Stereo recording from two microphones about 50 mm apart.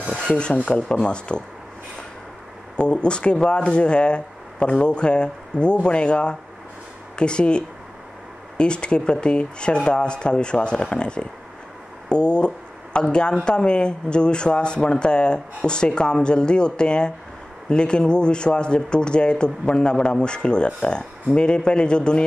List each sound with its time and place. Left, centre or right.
0.7 s speech: centre
2.8 s speech: centre